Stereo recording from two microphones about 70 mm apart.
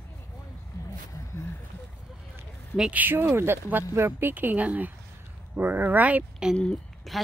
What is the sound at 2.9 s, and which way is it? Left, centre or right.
Speech, right.